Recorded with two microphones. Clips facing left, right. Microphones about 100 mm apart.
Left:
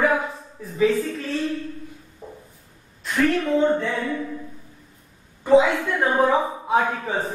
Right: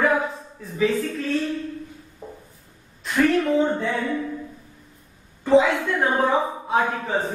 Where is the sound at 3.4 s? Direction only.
5° right (ahead or behind).